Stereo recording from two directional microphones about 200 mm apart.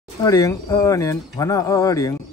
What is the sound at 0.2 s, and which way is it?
Speech, 15° left (ahead or behind).